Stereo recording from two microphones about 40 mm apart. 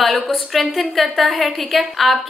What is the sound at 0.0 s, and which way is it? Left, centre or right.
A woman's voice, centre.